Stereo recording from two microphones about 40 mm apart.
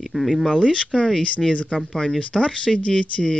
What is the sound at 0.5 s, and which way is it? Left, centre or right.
Speech, left.